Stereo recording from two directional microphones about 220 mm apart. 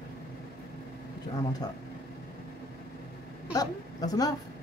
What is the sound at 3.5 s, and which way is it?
Speech, 15° left (ahead or behind).